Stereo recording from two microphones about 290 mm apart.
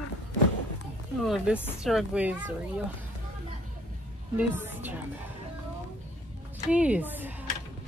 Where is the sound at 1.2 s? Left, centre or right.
Centre.